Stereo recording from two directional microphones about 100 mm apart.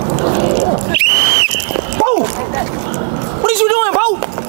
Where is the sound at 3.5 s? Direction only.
20° right (ahead or behind).